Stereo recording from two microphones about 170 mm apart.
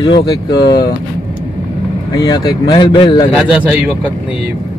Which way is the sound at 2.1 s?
25° left (ahead or behind).